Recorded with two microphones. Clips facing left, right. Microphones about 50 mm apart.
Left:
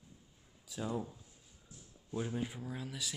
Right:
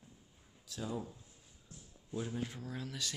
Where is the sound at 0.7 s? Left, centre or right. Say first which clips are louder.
Left 2 dB; centre.